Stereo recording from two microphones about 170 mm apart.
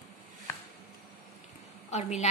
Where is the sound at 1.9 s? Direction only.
40° left (ahead or behind).